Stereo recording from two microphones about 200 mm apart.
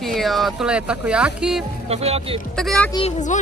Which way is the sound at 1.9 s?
30° right (ahead or behind).